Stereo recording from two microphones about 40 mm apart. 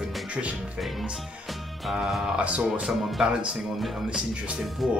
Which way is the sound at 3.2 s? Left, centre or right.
Centre.